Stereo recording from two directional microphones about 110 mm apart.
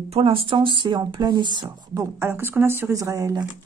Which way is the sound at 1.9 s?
25° right (ahead or behind).